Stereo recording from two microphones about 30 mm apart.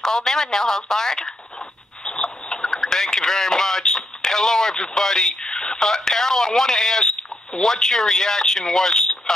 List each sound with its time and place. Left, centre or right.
0.0 s speech: centre
2.2 s radio: centre
5.4 s speech: left